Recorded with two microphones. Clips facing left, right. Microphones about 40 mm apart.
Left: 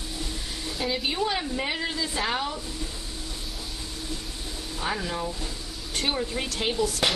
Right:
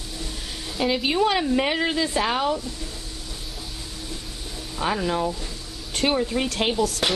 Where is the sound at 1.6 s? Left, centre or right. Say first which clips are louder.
Right 6 dB; right.